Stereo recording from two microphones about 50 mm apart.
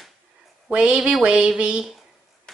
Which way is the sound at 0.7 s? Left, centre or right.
Right.